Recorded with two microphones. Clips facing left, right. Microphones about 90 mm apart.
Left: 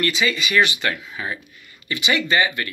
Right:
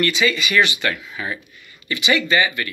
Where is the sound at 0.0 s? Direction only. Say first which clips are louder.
Right 2 dB; 30° left (ahead or behind).